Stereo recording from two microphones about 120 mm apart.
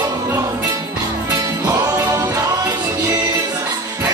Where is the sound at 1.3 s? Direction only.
30° right (ahead or behind).